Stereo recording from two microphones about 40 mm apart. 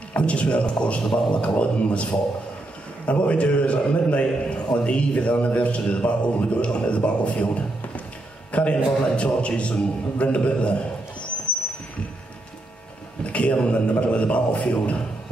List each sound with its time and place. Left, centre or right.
0.1 s a man's voice: left
13.2 s a man's voice: left